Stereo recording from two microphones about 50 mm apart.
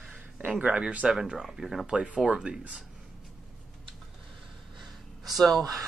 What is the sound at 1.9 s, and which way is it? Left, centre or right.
Speech, right.